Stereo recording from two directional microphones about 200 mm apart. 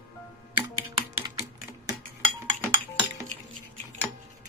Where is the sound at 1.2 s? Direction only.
20° right (ahead or behind).